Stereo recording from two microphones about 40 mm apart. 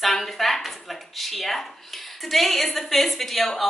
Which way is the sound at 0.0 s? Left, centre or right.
Centre.